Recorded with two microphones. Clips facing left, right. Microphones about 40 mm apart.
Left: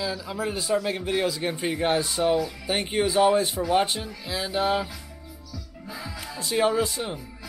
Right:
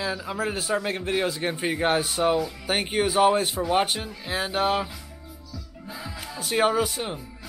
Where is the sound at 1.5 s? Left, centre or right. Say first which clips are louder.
Right 1 dB; right.